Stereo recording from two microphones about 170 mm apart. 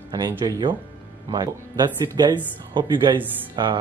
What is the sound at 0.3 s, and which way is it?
Speech, 25° right (ahead or behind).